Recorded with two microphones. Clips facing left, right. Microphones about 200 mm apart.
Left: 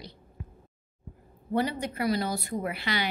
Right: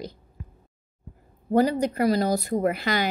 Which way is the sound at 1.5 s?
40° right (ahead or behind).